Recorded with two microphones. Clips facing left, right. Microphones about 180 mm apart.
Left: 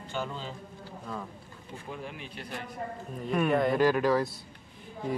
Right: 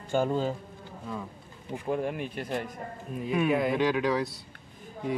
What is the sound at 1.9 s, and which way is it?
Speech, 50° right (ahead or behind).